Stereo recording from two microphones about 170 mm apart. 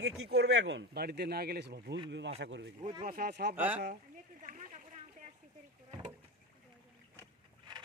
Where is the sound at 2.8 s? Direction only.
25° right (ahead or behind).